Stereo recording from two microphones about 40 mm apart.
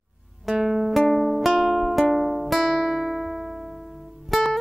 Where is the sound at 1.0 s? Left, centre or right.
Centre.